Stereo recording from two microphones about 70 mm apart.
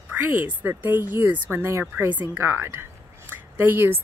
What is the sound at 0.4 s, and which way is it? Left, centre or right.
Speech, right.